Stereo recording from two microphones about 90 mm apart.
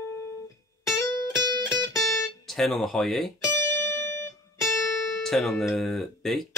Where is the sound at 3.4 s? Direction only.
35° left (ahead or behind).